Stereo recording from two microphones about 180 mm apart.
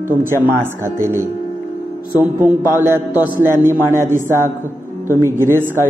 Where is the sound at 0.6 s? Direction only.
15° right (ahead or behind).